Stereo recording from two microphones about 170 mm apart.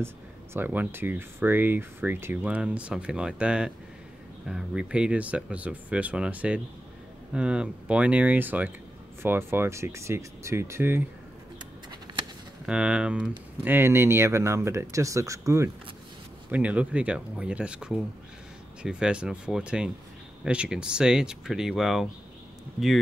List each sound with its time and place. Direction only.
0.0 s speech: 15° right (ahead or behind)
12.1 s a sound: 25° right (ahead or behind)
12.6 s speech: 5° right (ahead or behind)